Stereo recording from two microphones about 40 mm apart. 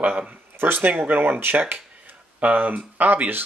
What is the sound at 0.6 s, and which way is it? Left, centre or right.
Speech, right.